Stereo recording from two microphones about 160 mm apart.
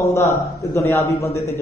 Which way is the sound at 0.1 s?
20° left (ahead or behind).